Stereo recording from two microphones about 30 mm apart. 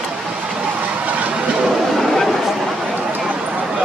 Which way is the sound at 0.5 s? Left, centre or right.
Right.